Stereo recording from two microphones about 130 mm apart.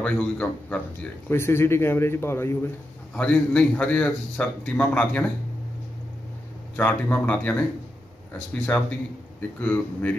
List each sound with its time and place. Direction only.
0.0 s a man's voice: 10° left (ahead or behind)
6.8 s a man's voice: 10° left (ahead or behind)